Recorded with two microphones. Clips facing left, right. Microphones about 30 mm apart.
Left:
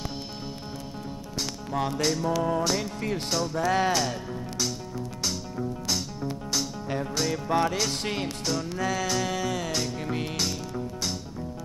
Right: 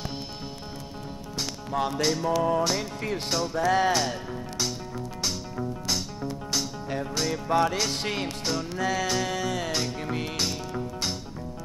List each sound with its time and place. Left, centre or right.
1.4 s music: centre
10.7 s music: centre